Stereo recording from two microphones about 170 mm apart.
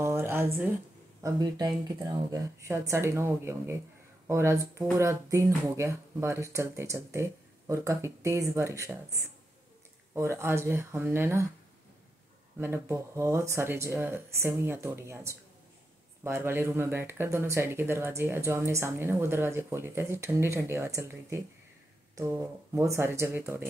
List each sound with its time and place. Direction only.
0.0 s a sound: 15° right (ahead or behind)
1.2 s speech: 25° right (ahead or behind)
12.5 s speech: 15° right (ahead or behind)